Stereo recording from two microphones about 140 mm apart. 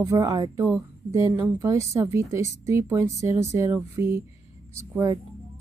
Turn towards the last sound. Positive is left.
turn(degrees=-25)  # may be behind; listen again after turning